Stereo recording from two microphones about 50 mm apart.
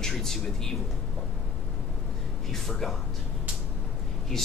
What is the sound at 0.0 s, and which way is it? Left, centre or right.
Speech, centre.